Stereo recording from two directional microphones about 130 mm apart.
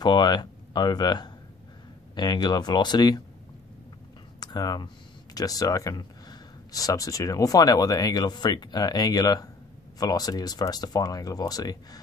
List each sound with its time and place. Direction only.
0.0 s speech: 35° left (ahead or behind)
4.4 s a sound: 30° left (ahead or behind)
5.3 s speech: 30° left (ahead or behind)